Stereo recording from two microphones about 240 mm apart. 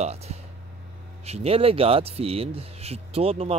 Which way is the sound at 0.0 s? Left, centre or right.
Right.